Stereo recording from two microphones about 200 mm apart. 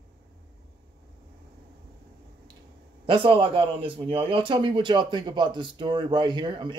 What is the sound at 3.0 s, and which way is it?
Speech, 25° right (ahead or behind).